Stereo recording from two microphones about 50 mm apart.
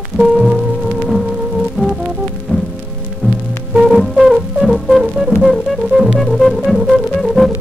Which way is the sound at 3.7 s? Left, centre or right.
Centre.